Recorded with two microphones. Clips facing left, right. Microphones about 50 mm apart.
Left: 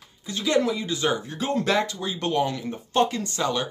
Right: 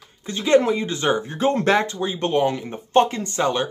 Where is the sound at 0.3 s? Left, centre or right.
Right.